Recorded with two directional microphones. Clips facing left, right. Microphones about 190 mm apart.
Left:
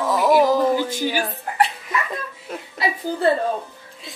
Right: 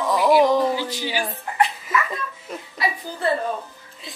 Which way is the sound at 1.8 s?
Centre (ahead or behind).